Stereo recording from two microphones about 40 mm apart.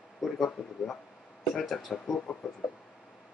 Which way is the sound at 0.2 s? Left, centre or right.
Centre.